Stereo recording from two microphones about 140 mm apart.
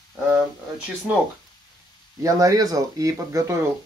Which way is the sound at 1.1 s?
10° right (ahead or behind).